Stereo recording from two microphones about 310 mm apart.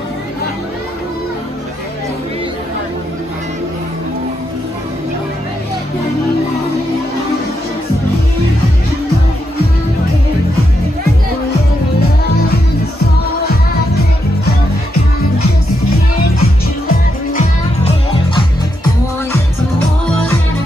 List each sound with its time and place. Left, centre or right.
16.3 s music: left